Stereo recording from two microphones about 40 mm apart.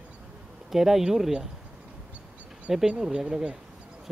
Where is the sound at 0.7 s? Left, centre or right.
Centre.